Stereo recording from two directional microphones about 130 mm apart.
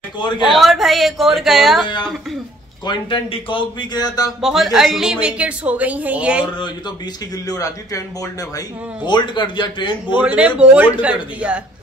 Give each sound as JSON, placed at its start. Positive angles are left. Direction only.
{"t": 0.5, "sound": "speech", "side_deg": 0}
{"t": 2.9, "sound": "speech", "side_deg": 40}
{"t": 4.4, "sound": "a woman's voice", "side_deg": 0}
{"t": 7.4, "sound": "a man's voice", "side_deg": 25}
{"t": 9.0, "sound": "speech", "side_deg": 35}
{"t": 10.2, "sound": "a woman's voice", "side_deg": -10}